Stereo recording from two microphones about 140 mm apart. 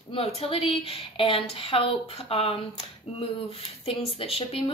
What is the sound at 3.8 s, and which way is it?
Speech, 45° left (ahead or behind).